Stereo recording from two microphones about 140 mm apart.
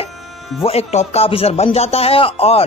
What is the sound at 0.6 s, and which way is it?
Speech, 50° left (ahead or behind).